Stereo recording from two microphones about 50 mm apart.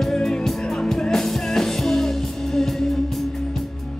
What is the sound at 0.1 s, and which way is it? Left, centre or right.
Music, centre.